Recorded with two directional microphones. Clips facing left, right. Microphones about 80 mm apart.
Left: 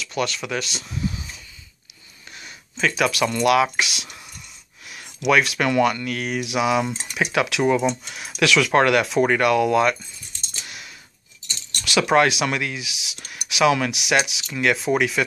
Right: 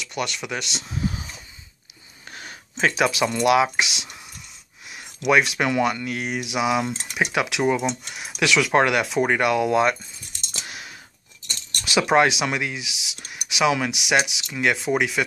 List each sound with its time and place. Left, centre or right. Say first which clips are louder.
0.1 s speech: left 3 dB; centre
0.8 s a sound: even; right
3.0 s speech: left 2 dB; centre
5.3 s speech: left 1 dB; centre
10.6 s a sound: right 2 dB; right
11.8 s speech: left 1 dB; centre